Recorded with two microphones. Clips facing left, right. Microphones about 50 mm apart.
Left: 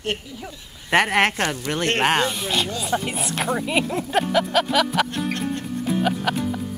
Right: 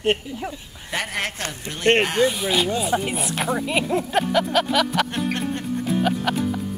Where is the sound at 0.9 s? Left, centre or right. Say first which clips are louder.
Left 9 dB; left.